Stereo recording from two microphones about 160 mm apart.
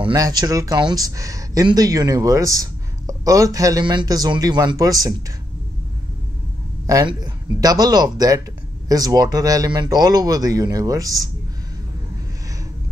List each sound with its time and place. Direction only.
0.0 s speech: 25° right (ahead or behind)
6.9 s speech: 25° right (ahead or behind)